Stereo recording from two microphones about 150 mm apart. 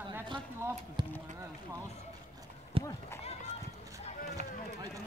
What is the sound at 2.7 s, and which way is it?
Clip-clop, 40° right (ahead or behind).